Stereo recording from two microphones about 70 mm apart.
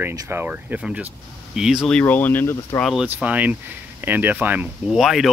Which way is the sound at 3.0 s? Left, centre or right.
Right.